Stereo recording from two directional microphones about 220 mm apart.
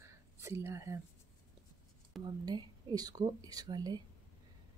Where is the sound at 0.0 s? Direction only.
10° right (ahead or behind).